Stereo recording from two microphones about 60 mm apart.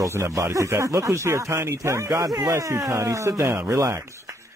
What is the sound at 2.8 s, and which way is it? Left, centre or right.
Speech, right.